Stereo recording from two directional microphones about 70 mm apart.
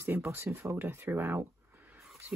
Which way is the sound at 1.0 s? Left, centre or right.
Right.